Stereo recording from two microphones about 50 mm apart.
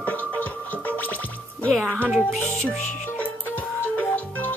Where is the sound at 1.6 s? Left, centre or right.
Left.